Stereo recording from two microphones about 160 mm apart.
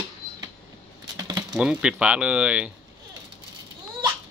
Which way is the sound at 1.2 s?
25° right (ahead or behind).